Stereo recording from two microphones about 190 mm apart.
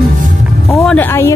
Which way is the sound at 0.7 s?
5° left (ahead or behind).